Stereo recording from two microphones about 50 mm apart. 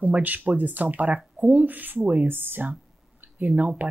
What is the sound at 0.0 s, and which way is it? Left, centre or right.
Speech, right.